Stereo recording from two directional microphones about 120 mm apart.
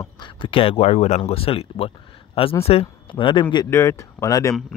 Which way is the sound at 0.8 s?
70° left (ahead or behind).